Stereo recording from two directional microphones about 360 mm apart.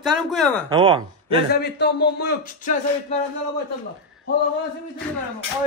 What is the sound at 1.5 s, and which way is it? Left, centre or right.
Speech, left.